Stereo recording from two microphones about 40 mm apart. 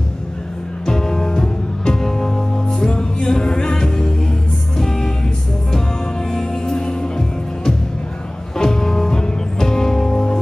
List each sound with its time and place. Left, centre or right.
0.8 s music: centre